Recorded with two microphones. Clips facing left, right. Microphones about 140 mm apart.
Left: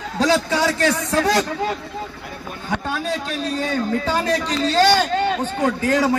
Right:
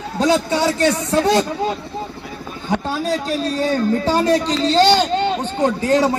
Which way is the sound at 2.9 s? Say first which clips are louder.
Right 4 dB; 35° right (ahead or behind).